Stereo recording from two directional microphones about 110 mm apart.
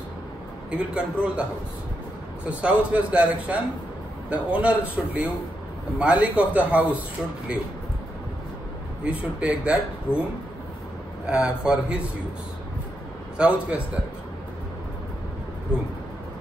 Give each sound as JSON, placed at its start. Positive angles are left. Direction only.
{"t": 0.7, "sound": "a man's voice", "side_deg": -10}
{"t": 9.0, "sound": "a man's voice", "side_deg": -10}
{"t": 10.1, "sound": "speech", "side_deg": 20}
{"t": 11.2, "sound": "a man's voice", "side_deg": -10}
{"t": 13.4, "sound": "a man's voice", "side_deg": -10}